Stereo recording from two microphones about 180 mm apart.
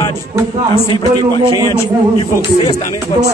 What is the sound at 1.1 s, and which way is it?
Speech, 25° right (ahead or behind).